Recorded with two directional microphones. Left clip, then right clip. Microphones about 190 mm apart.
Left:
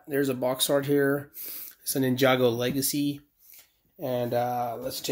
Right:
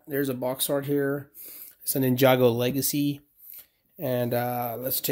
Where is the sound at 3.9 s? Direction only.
35° right (ahead or behind).